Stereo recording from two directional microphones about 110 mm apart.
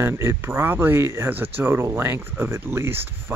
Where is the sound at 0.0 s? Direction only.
25° right (ahead or behind).